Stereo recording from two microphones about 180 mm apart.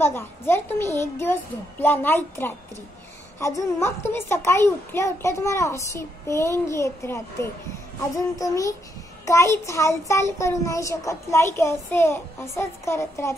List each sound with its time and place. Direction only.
0.0 s a child's voice: 15° left (ahead or behind)